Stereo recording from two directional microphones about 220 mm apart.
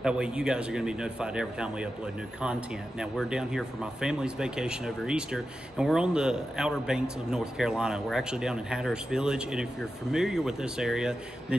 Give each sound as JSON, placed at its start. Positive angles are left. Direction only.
{"t": 0.0, "sound": "speech", "side_deg": -5}
{"t": 3.0, "sound": "speech", "side_deg": -5}